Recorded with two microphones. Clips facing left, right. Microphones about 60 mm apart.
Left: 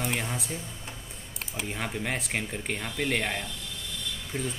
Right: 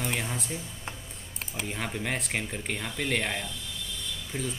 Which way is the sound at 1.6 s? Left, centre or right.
Centre.